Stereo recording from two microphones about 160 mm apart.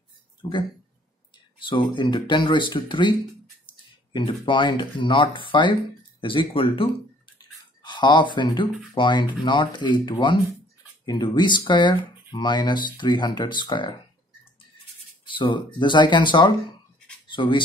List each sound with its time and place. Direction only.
0.4 s speech: 30° left (ahead or behind)
7.3 s a sound: 30° left (ahead or behind)
8.9 s speech: 30° left (ahead or behind)
15.2 s speech: 30° left (ahead or behind)